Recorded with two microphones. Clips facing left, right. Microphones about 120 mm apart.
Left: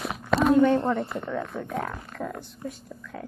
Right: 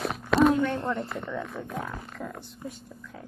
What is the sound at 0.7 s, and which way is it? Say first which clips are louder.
Speech: left 6 dB; 30° left (ahead or behind).